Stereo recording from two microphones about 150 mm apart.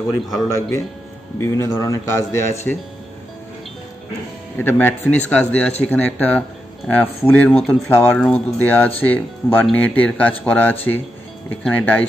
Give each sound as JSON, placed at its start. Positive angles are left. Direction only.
{"t": 0.6, "sound": "speech", "side_deg": 20}
{"t": 4.6, "sound": "speech", "side_deg": 15}